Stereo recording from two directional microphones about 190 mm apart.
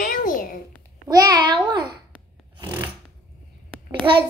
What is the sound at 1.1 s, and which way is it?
Speech, 20° right (ahead or behind).